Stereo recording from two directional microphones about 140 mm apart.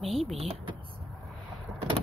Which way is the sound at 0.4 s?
45° right (ahead or behind).